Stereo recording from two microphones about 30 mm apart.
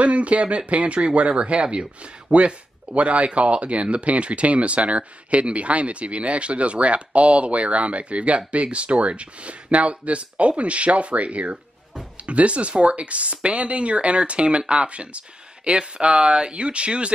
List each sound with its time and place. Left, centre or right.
0.0 s speech: right
2.3 s speech: right